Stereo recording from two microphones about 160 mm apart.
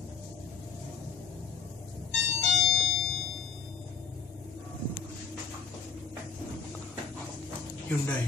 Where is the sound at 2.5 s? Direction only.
Centre (ahead or behind).